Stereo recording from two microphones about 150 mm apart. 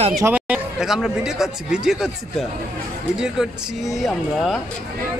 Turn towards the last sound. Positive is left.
turn(degrees=0)  # may be behind; listen again after turning